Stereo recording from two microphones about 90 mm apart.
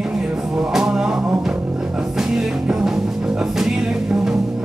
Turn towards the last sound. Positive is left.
turn(degrees=-5)  # may be behind; listen again after turning